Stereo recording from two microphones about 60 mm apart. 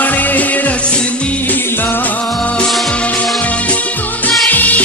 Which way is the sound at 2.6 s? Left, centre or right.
Centre.